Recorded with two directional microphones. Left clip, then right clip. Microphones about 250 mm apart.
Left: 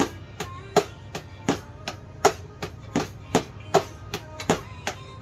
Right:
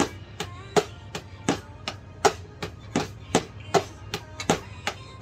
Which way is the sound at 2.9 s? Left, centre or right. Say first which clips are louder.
Left 1 dB; centre.